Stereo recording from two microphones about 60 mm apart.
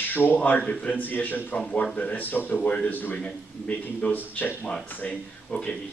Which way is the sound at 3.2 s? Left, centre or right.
Centre.